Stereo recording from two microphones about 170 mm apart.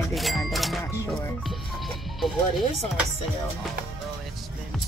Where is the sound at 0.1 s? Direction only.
Centre (ahead or behind).